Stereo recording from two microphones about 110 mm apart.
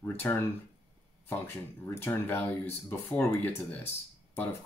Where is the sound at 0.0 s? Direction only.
20° left (ahead or behind).